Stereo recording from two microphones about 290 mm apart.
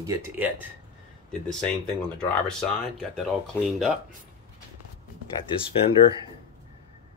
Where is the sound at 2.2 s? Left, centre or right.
Centre.